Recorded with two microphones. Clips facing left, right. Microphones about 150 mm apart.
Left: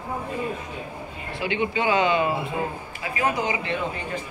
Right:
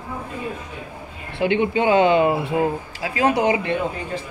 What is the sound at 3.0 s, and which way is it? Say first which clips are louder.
Speech: right 6 dB; 75° right (ahead or behind).